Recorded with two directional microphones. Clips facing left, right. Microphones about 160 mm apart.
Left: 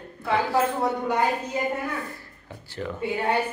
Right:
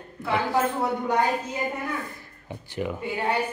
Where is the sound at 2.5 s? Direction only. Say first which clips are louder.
Right 3 dB; 15° right (ahead or behind).